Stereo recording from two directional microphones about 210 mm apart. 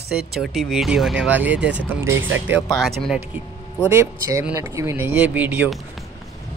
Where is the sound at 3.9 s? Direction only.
15° right (ahead or behind).